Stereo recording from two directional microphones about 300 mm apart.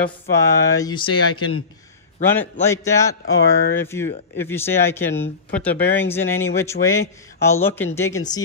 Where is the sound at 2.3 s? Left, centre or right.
Centre.